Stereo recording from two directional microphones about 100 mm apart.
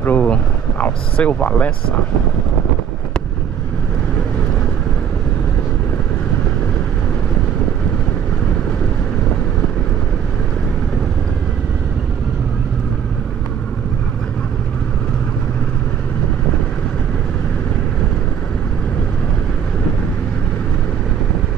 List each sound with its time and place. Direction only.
0.0 s speech: 15° left (ahead or behind)